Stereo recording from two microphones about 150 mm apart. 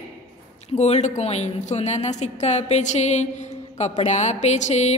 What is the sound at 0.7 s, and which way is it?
A woman's voice, 50° left (ahead or behind).